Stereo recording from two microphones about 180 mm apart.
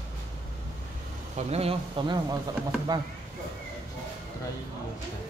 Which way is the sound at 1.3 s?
35° right (ahead or behind).